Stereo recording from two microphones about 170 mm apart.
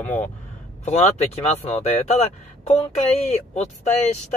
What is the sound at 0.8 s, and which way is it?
Speech, 40° left (ahead or behind).